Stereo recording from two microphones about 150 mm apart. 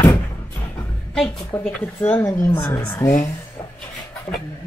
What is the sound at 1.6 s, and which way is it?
Speech, 15° left (ahead or behind).